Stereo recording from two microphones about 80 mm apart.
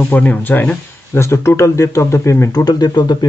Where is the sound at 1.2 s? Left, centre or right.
Left.